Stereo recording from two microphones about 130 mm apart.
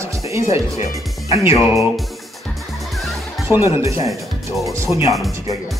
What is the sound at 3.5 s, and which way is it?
Speech, 20° right (ahead or behind).